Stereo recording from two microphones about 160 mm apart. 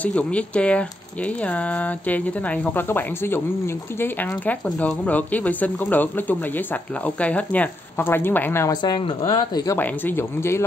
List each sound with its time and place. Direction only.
0.0 s speech: 10° left (ahead or behind)
8.8 s speech: 25° left (ahead or behind)